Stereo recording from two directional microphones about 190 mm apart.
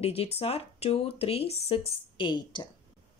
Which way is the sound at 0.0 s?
30° left (ahead or behind).